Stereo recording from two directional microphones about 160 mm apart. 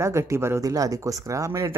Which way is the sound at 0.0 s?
15° right (ahead or behind).